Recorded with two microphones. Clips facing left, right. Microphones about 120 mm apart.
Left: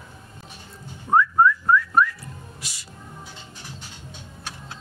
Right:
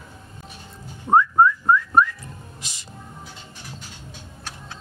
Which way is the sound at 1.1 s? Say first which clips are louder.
Right 2 dB; 25° right (ahead or behind).